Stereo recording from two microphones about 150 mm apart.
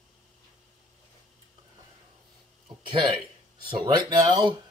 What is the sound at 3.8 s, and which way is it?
Speech, 25° right (ahead or behind).